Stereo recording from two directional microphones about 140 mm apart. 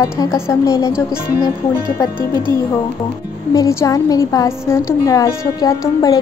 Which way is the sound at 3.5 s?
25° left (ahead or behind).